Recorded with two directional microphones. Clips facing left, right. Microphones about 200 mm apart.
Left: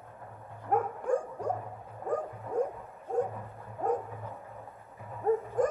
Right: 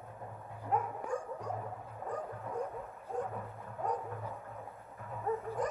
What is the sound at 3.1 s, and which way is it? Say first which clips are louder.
Music: left 8 dB; 45° left (ahead or behind).